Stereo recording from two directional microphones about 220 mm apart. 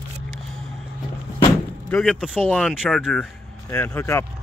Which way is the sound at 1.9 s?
Centre (ahead or behind).